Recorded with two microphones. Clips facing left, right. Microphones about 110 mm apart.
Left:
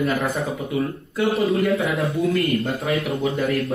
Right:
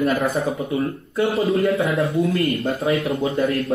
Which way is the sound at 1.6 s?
30° right (ahead or behind).